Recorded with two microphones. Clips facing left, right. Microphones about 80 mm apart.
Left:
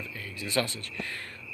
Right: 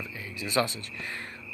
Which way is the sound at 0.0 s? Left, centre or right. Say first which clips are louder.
Right 1 dB; centre.